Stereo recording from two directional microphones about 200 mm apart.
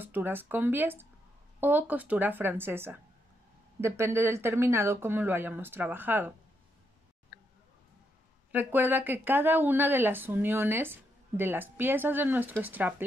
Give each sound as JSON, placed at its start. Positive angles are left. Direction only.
{"t": 0.0, "sound": "speech", "side_deg": -10}
{"t": 8.5, "sound": "speech", "side_deg": -10}